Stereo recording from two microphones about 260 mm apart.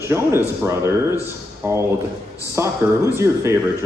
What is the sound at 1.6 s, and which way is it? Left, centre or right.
Speech, centre.